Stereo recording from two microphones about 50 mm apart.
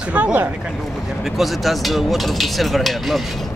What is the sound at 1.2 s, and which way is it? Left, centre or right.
Speech, centre.